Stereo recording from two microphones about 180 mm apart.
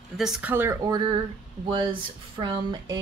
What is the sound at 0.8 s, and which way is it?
Speech, 20° right (ahead or behind).